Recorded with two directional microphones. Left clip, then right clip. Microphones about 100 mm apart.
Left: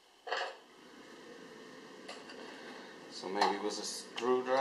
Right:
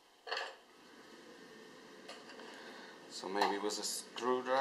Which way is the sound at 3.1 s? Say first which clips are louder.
Left 1 dB; 25° right (ahead or behind).